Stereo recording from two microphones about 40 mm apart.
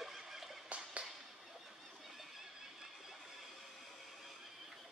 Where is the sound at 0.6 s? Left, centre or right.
Right.